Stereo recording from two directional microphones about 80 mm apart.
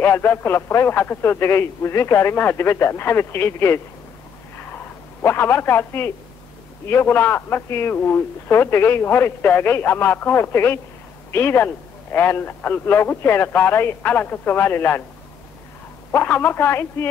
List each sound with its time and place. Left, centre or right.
0.0 s speech: left
4.6 s a sound: left
6.9 s a man's voice: left
16.1 s a man's voice: left